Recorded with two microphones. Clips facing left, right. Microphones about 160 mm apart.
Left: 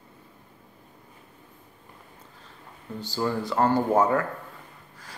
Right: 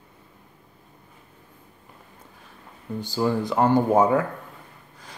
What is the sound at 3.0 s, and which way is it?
Speech, 15° right (ahead or behind).